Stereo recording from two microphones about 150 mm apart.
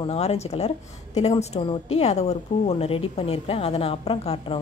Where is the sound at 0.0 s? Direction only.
45° left (ahead or behind).